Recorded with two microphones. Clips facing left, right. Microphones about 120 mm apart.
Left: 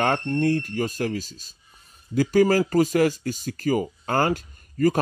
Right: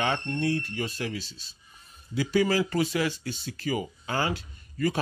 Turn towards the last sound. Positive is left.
turn(degrees=45)  # may be behind; listen again after turning